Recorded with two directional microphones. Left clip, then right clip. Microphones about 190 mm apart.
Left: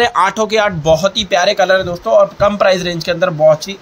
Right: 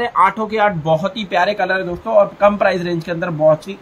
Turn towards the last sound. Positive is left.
turn(degrees=45)  # may be behind; listen again after turning